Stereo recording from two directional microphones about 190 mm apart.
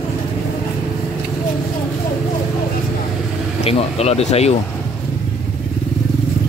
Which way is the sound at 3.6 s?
35° left (ahead or behind).